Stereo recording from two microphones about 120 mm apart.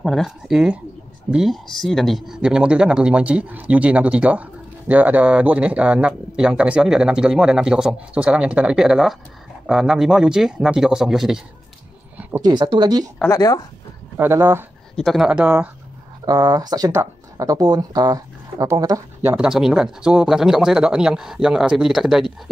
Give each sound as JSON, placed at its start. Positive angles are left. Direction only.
{"t": 0.0, "sound": "speech", "side_deg": 0}
{"t": 12.4, "sound": "speech", "side_deg": -35}
{"t": 13.3, "sound": "speech", "side_deg": 30}
{"t": 14.1, "sound": "speech", "side_deg": -20}
{"t": 15.0, "sound": "speech", "side_deg": 0}
{"t": 16.3, "sound": "speech", "side_deg": -35}
{"t": 19.2, "sound": "speech", "side_deg": -5}